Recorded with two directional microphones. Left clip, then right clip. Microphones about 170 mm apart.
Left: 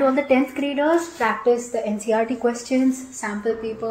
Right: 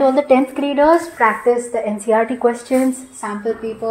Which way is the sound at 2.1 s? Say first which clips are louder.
Right 6 dB; 5° right (ahead or behind).